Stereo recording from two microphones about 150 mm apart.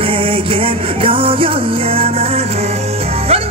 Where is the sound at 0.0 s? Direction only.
35° right (ahead or behind).